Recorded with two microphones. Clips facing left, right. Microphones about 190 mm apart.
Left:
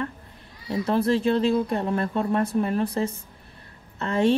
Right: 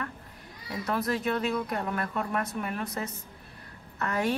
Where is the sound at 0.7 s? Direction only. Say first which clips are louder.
Left 8 dB; 30° left (ahead or behind).